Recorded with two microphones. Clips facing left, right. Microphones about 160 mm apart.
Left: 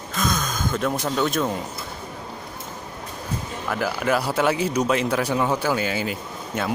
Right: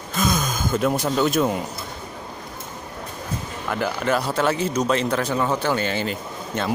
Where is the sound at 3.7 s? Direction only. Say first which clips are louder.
Even; 5° left (ahead or behind).